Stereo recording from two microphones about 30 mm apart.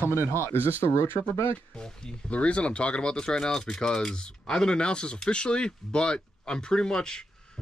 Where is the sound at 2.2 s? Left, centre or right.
Left.